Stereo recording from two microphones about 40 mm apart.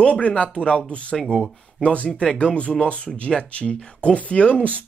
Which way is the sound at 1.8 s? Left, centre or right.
Left.